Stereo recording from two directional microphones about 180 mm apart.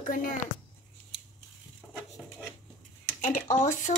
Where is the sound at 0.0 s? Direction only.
45° left (ahead or behind).